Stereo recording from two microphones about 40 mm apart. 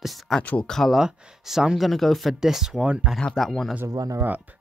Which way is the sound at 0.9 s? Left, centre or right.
Centre.